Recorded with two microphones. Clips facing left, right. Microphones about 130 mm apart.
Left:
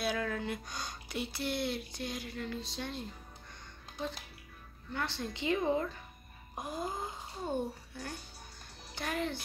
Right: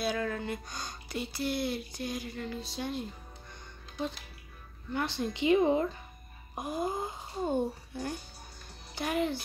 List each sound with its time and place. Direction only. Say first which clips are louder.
0.0 s speech: right 2 dB; centre (ahead or behind)
4.9 s speech: right 5 dB; 15° right (ahead or behind)
6.5 s speech: right 5 dB; 10° right (ahead or behind)